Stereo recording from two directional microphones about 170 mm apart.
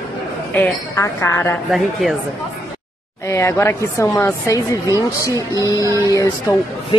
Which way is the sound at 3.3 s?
15° left (ahead or behind).